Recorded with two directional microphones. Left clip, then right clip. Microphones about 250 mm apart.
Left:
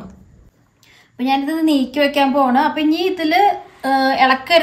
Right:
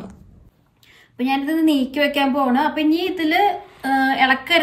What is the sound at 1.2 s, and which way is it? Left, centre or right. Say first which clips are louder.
A woman's voice: left 2 dB; centre.